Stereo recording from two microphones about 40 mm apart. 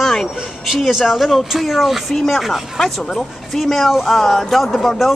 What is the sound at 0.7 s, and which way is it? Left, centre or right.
Speech, centre.